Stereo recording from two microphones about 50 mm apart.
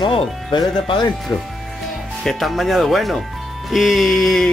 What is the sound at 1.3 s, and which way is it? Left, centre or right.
Speech, left.